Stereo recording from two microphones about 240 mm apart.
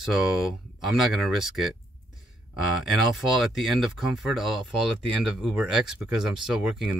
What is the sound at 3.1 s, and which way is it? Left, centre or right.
Speech, centre.